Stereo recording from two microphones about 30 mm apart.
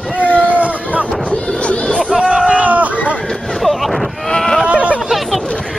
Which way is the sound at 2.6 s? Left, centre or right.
Right.